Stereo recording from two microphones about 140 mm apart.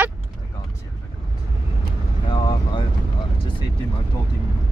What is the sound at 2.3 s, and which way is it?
Vehicle, 35° left (ahead or behind).